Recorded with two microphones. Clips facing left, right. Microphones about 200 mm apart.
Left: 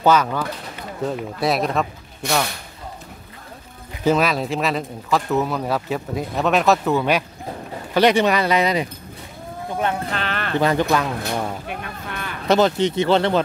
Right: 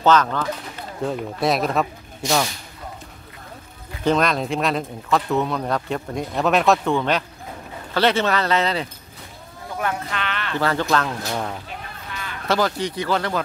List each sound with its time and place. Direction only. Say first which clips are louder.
0.0 s speech: even; 10° left (ahead or behind)
2.2 s speech: right 1 dB; 60° left (ahead or behind)
4.0 s speech: left 1 dB; 5° left (ahead or behind)
9.8 s sheep: left 2 dB; 30° left (ahead or behind)
10.6 s speech: left 2 dB; 15° left (ahead or behind)
11.6 s a sound: left 5 dB; 55° left (ahead or behind)
12.4 s speech: left 5 dB; 20° left (ahead or behind)